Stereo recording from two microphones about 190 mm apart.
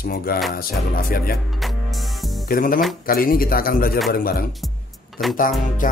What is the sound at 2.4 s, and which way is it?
A man's voice, 45° left (ahead or behind).